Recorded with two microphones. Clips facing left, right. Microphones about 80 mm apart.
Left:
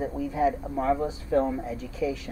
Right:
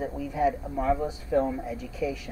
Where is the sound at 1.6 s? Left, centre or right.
Centre.